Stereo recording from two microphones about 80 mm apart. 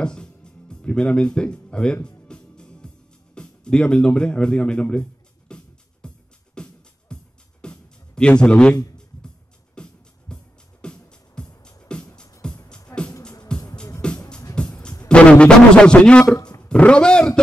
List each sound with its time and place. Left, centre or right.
0.0 s music: centre
3.3 s speech: centre
5.5 s music: centre
9.8 s music: centre
14.5 s music: left
15.0 s a man's voice: centre